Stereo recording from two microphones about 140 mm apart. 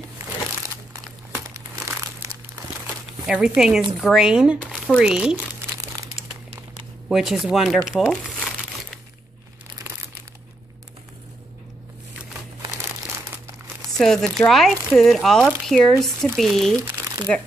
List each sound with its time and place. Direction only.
3.3 s speech: 5° right (ahead or behind)
7.1 s speech: 5° right (ahead or behind)
13.9 s speech: 5° left (ahead or behind)